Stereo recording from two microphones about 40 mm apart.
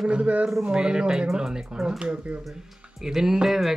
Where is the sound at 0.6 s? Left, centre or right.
Centre.